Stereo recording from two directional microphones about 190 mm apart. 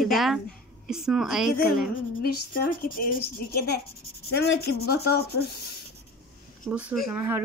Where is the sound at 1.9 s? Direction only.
45° left (ahead or behind).